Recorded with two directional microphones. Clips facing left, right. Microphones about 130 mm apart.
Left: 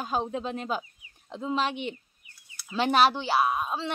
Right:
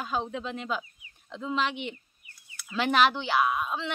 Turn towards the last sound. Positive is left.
turn(degrees=35)  # may be behind; listen again after turning